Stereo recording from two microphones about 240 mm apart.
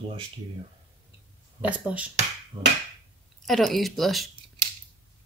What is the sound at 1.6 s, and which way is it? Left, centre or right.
Speech, centre.